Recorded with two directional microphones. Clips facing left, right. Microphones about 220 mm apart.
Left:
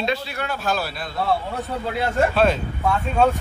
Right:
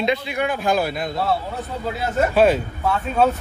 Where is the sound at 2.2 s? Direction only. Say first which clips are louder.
Right 3 dB; 5° right (ahead or behind).